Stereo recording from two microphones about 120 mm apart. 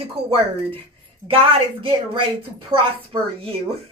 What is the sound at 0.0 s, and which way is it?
A woman's voice, 55° right (ahead or behind).